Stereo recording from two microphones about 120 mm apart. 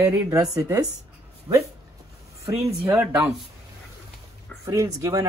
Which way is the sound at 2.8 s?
10° right (ahead or behind).